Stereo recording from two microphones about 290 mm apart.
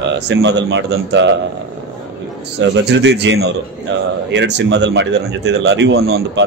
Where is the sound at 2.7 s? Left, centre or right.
Right.